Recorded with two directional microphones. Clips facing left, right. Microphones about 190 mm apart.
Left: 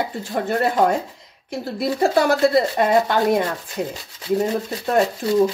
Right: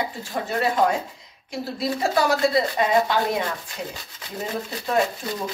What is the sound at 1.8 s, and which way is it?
Speech, 55° left (ahead or behind).